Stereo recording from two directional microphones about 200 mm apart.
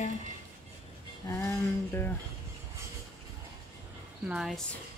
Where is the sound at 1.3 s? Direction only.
15° left (ahead or behind).